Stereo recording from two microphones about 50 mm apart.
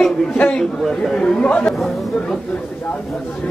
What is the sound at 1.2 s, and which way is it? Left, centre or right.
Speech, left.